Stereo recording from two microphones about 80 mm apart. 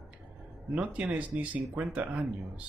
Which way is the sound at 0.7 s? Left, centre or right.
Centre.